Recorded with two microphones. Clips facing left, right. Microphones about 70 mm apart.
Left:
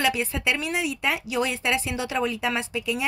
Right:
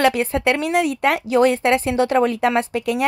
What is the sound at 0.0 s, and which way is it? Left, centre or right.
A woman's voice, right.